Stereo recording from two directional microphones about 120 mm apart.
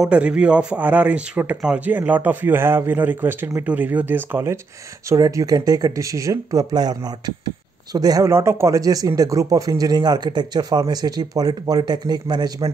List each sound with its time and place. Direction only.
0.0 s speech: 10° right (ahead or behind)
5.1 s speech: 30° right (ahead or behind)